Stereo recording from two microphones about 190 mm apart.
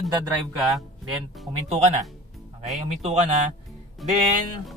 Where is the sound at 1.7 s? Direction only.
35° right (ahead or behind).